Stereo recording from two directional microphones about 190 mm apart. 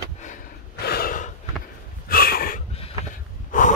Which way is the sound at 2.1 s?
50° left (ahead or behind).